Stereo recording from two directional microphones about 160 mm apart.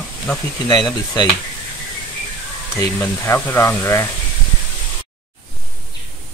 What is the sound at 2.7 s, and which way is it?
Speech, 15° left (ahead or behind).